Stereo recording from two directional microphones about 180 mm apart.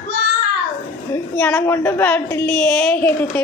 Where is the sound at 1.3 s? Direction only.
10° left (ahead or behind).